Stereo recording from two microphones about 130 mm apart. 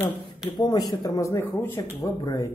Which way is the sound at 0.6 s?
30° left (ahead or behind).